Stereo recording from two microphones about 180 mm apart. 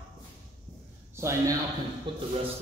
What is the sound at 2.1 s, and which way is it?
Speech, 25° right (ahead or behind).